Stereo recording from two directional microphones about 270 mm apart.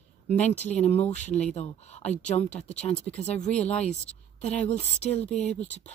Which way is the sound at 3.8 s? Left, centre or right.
Left.